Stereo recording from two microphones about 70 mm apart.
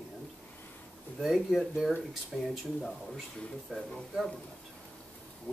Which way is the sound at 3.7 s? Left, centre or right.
Centre.